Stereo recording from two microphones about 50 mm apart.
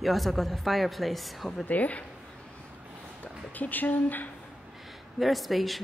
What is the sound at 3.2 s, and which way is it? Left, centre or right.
Speech, left.